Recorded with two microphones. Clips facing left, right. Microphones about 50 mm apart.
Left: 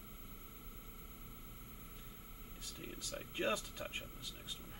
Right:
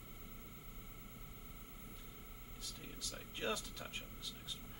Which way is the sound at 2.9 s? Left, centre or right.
Left.